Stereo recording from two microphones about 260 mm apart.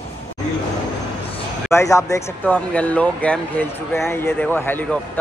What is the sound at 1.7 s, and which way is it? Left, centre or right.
Speech, centre.